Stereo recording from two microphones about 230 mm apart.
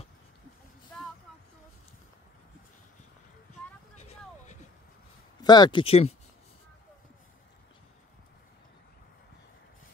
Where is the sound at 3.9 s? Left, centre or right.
Left.